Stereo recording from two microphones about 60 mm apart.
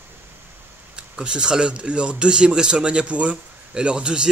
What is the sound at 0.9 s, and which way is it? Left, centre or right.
Speech, centre.